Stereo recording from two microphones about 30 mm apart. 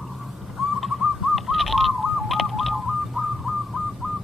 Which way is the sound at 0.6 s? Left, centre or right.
Centre.